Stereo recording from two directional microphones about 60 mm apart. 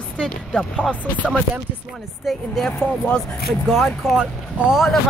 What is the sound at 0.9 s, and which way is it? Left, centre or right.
Speech, left.